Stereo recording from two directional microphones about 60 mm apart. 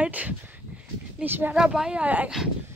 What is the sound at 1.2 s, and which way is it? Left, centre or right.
Speech, right.